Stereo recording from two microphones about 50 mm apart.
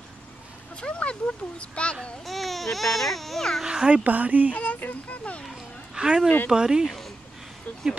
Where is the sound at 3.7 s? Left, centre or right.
Centre.